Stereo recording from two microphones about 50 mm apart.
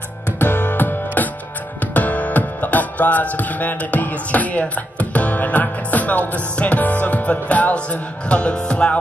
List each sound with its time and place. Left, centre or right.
0.4 s music: left; by 8.9 s centre